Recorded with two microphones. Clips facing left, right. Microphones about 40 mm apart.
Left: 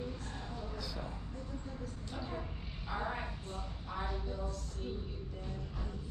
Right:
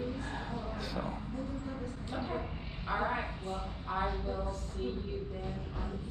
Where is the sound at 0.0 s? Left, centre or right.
Right.